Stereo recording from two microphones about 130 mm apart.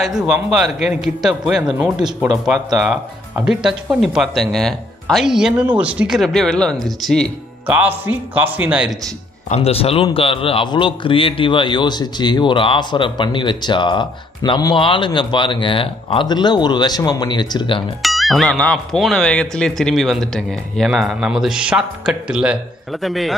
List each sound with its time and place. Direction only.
0.0 s speech: 5° right (ahead or behind)
7.6 s speech: 10° right (ahead or behind)
9.5 s a man's voice: 50° left (ahead or behind)
18.0 s speech: centre (ahead or behind)